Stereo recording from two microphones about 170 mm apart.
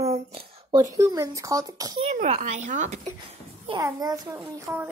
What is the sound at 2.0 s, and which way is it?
Speech, 45° right (ahead or behind).